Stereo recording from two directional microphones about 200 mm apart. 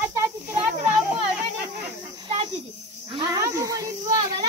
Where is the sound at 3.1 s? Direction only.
15° right (ahead or behind).